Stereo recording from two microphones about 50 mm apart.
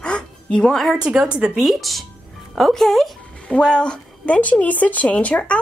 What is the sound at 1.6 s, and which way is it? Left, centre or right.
A woman's voice, centre.